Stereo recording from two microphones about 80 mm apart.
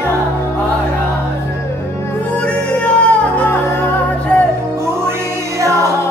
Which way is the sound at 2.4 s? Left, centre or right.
Centre.